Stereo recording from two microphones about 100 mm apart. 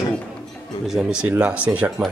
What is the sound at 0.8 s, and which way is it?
Speech, 5° right (ahead or behind).